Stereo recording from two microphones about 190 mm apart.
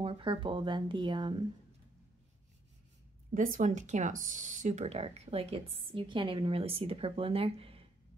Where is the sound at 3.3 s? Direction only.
40° right (ahead or behind).